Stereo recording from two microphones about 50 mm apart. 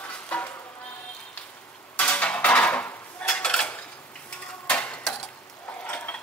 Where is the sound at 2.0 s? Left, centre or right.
Left.